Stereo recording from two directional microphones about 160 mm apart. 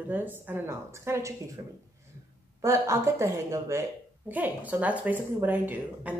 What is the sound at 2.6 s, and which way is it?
Speech, 20° right (ahead or behind).